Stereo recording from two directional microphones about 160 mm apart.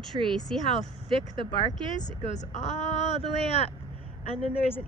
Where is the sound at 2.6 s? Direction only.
45° left (ahead or behind).